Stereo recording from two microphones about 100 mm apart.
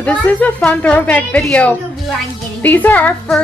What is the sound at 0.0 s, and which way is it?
Speech, 15° left (ahead or behind).